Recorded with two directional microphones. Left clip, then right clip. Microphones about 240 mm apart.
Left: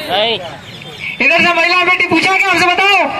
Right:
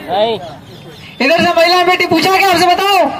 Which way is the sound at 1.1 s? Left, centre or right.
Right.